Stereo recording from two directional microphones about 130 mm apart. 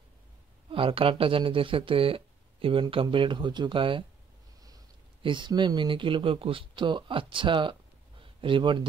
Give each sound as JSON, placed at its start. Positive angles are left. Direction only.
{"t": 0.7, "sound": "speech", "side_deg": -45}
{"t": 5.2, "sound": "speech", "side_deg": -35}
{"t": 8.2, "sound": "a sound", "side_deg": -40}